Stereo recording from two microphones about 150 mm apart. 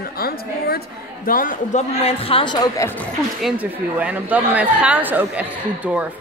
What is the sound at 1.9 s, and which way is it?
Speech, 40° left (ahead or behind).